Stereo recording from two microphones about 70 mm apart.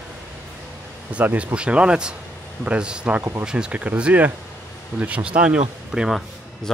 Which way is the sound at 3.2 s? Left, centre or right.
Right.